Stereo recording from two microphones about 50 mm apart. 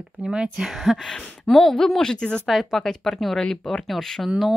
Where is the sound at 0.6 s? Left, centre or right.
Centre.